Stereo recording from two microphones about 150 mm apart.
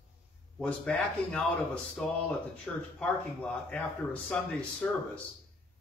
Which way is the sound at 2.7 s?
10° left (ahead or behind).